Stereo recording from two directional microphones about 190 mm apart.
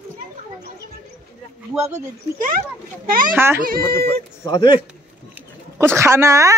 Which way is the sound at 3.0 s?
50° right (ahead or behind).